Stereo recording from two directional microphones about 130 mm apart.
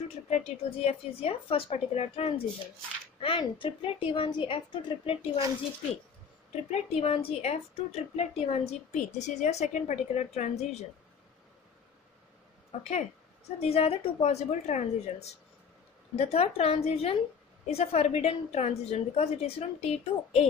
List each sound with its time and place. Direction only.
0.3 s a woman's voice: 55° left (ahead or behind)
6.7 s a woman's voice: 50° left (ahead or behind)
12.7 s a woman's voice: 65° left (ahead or behind)
13.6 s a woman's voice: 50° left (ahead or behind)